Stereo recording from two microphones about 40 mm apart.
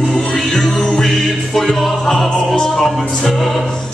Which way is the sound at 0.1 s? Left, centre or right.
Centre.